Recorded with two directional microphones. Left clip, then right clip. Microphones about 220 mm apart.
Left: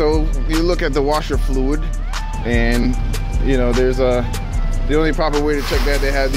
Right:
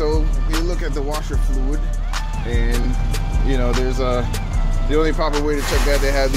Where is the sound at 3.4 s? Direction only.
25° left (ahead or behind).